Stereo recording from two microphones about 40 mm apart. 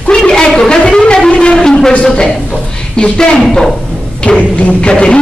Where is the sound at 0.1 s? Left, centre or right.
Centre.